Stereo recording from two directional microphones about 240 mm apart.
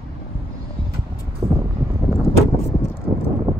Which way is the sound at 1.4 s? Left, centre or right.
Right.